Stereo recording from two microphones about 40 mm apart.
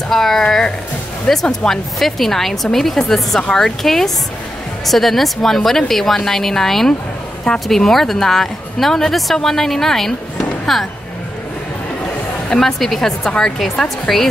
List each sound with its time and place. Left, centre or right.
0.1 s a woman's voice: centre
12.5 s a woman's voice: centre